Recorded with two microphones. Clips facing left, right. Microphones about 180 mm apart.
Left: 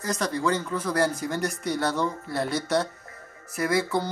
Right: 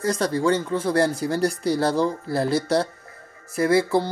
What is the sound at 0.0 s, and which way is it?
Speech, 30° right (ahead or behind).